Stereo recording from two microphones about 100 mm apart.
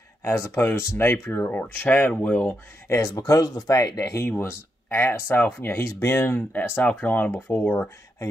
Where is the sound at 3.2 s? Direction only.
40° left (ahead or behind).